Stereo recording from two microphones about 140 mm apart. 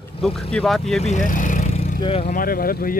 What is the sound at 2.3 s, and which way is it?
Speech, 90° left.